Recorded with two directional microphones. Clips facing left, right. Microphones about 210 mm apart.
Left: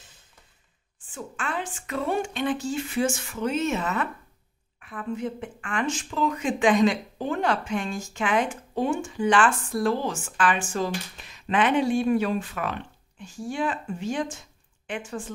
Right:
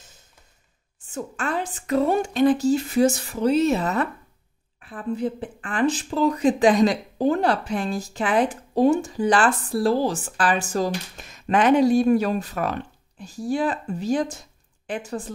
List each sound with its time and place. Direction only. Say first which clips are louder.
0.9 s speech: right 5 dB; 40° right (ahead or behind)